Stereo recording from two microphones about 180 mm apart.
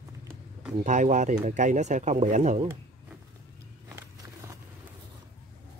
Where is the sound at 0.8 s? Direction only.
40° right (ahead or behind).